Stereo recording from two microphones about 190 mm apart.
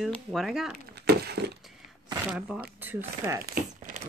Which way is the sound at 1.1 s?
60° right (ahead or behind).